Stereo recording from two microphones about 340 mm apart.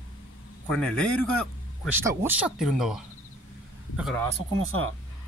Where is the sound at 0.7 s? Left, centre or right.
Centre.